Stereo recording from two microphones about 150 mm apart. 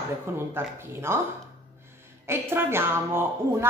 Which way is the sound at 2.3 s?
15° right (ahead or behind).